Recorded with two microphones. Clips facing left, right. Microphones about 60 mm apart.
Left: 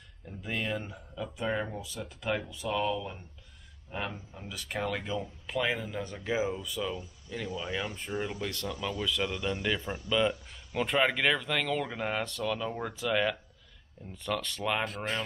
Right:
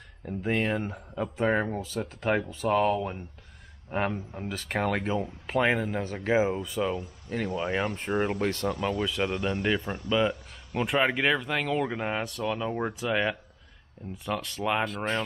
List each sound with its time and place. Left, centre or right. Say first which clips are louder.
0.2 s speech: right 8 dB; right
10.2 s speech: right 2 dB; centre